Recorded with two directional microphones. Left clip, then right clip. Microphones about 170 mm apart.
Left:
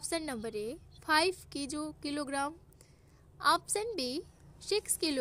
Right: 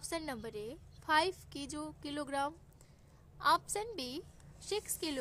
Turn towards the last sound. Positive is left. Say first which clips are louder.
# left 6 dB
turn(degrees=20)  # may be behind; listen again after turning